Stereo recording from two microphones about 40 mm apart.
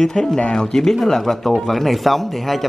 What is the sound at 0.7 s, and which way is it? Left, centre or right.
Speech, centre.